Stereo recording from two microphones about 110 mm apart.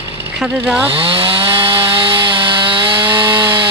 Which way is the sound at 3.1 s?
45° right (ahead or behind).